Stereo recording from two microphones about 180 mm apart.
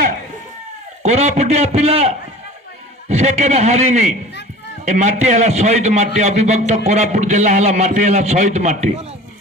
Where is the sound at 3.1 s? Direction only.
40° right (ahead or behind).